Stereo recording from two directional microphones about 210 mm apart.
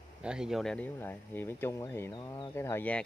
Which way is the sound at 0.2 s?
5° right (ahead or behind).